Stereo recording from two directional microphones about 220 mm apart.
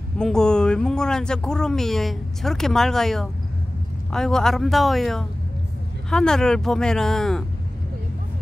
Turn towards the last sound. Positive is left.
turn(degrees=0)  # may be behind; listen again after turning